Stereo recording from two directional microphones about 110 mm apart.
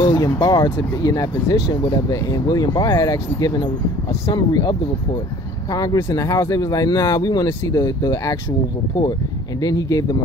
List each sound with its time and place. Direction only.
0.0 s speech: 40° left (ahead or behind)
9.6 s speech: 35° left (ahead or behind)